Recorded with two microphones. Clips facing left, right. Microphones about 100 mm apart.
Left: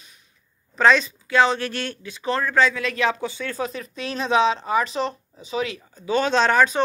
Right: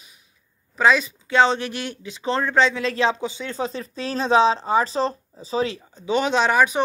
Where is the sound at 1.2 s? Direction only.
25° right (ahead or behind).